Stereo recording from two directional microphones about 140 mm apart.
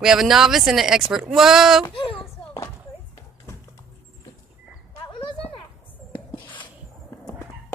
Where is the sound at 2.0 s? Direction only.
40° left (ahead or behind).